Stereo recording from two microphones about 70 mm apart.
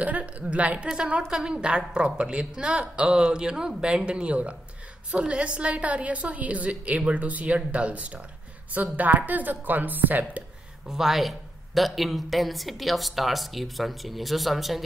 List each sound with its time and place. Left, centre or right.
0.0 s a woman's voice: right
10.9 s speech: centre